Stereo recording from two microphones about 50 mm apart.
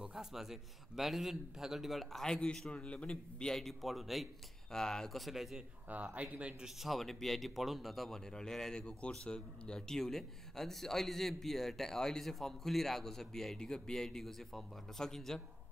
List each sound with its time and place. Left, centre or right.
0.0 s a man's voice: centre
2.2 s a man's voice: centre
3.5 s a man's voice: centre
4.6 s a man's voice: centre
5.9 s speech: right
6.6 s a man's voice: centre
8.3 s a man's voice: centre